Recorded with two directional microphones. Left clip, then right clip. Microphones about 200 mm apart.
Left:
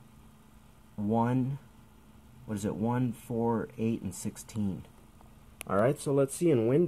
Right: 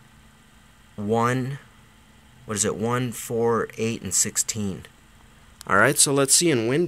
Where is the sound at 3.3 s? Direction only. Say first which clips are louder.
Right 10 dB; 35° right (ahead or behind).